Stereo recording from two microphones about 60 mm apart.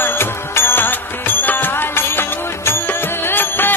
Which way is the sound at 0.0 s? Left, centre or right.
Left.